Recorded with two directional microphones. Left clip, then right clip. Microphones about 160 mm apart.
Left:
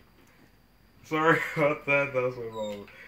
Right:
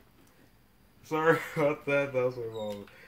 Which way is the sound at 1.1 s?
65° right (ahead or behind).